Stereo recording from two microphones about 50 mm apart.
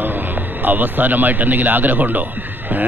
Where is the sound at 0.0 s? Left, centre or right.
Right.